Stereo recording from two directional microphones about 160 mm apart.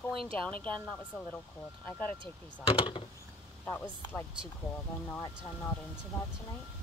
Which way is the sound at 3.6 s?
10° left (ahead or behind).